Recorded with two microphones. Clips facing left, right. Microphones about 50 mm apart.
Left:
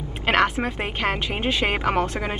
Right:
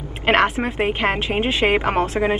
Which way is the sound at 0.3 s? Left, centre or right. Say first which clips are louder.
Right 3 dB; right.